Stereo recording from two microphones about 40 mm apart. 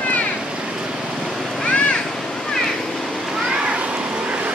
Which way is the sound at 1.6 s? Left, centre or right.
Left.